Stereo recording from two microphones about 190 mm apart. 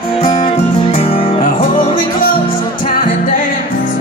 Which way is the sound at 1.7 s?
45° left (ahead or behind).